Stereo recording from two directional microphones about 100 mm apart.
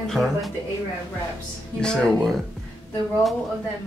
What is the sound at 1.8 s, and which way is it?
Speech, 5° left (ahead or behind).